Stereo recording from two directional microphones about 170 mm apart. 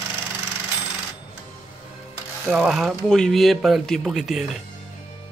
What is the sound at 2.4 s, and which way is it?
Speech, 5° right (ahead or behind).